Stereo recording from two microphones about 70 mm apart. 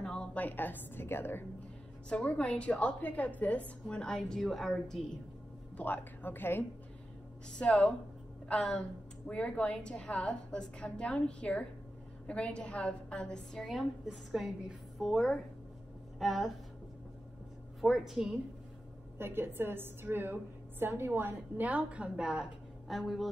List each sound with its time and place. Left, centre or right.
0.0 s a sound: centre
0.4 s a woman's voice: left
2.0 s a woman's voice: centre
3.8 s a woman's voice: centre
5.8 s a woman's voice: left
7.5 s a woman's voice: centre
17.7 s a woman's voice: centre
19.1 s a woman's voice: right; by 22.5 s centre
22.8 s a woman's voice: centre